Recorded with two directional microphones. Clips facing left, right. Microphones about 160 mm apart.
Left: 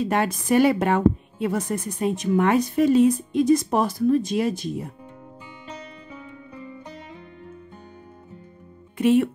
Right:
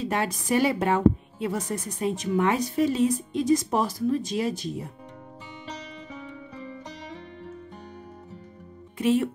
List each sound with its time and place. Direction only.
0.0 s a woman's voice: 55° left (ahead or behind)
8.9 s speech: 60° left (ahead or behind)